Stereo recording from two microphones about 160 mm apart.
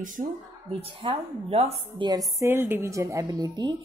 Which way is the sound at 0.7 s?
35° right (ahead or behind).